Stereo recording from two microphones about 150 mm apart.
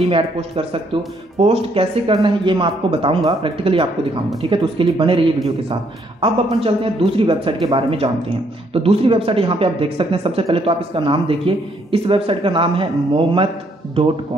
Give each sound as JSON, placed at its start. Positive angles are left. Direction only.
{"t": 0.1, "sound": "speech", "side_deg": -40}
{"t": 6.2, "sound": "speech", "side_deg": -35}